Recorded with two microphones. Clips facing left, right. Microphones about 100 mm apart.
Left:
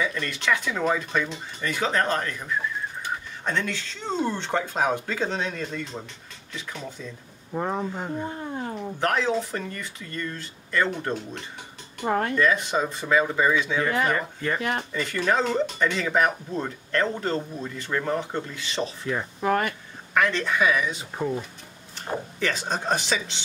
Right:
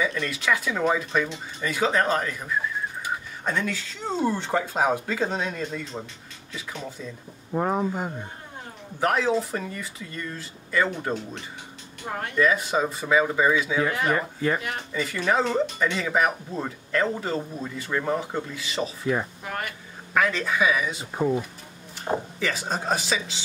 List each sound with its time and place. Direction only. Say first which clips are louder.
0.0 s speech: right 1 dB; 5° right (ahead or behind)
12.0 s speech: left 8 dB; 65° left (ahead or behind)
12.4 s speech: right 1 dB; 5° right (ahead or behind)
19.4 s speech: left 9 dB; 65° left (ahead or behind)
20.2 s speech: even; 5° right (ahead or behind)